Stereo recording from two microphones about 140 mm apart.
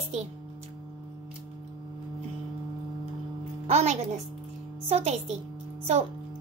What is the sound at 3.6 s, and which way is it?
A woman's voice, 50° right (ahead or behind).